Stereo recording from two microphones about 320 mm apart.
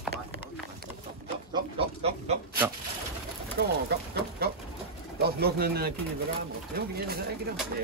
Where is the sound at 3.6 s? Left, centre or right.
Right.